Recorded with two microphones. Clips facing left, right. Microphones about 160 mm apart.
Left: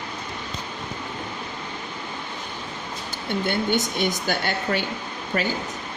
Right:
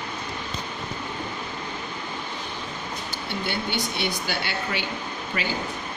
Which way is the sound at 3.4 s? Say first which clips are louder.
Left 6 dB; 45° left (ahead or behind).